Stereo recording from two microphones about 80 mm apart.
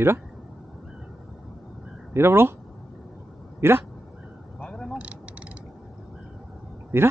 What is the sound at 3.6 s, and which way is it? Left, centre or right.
Speech, right.